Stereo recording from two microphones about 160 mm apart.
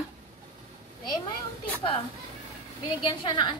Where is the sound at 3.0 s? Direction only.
30° left (ahead or behind).